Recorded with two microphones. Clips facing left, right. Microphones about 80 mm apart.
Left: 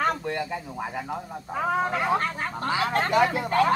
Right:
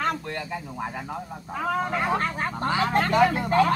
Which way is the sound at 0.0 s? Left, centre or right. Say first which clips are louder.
Left 2 dB; centre.